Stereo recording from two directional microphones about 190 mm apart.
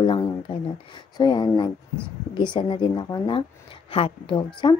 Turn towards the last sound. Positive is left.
turn(degrees=25)  # may be behind; listen again after turning